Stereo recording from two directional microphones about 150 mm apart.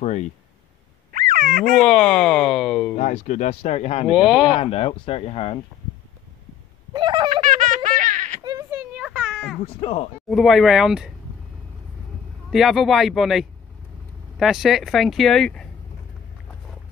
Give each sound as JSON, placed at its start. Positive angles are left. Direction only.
{"t": 1.1, "sound": "a sound", "side_deg": -65}
{"t": 1.8, "sound": "speech", "side_deg": 5}
{"t": 3.0, "sound": "speech", "side_deg": 55}
{"t": 4.1, "sound": "speech", "side_deg": -5}
{"t": 4.6, "sound": "speech", "side_deg": 40}
{"t": 6.9, "sound": "fowl", "side_deg": -30}
{"t": 7.4, "sound": "baby laughter", "side_deg": -60}
{"t": 8.5, "sound": "a sound", "side_deg": -20}
{"t": 9.1, "sound": "a sound", "side_deg": 0}
{"t": 9.8, "sound": "speech", "side_deg": 40}
{"t": 10.3, "sound": "speech", "side_deg": 0}
{"t": 12.4, "sound": "speech", "side_deg": 0}